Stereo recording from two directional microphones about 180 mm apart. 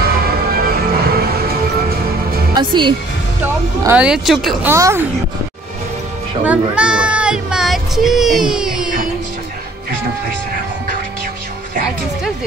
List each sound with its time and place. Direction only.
0.0 s music: 60° right (ahead or behind)
2.5 s speech: 25° right (ahead or behind)
3.8 s speech: 5° right (ahead or behind)
4.6 s speech: 15° right (ahead or behind)
6.4 s speech: 5° right (ahead or behind)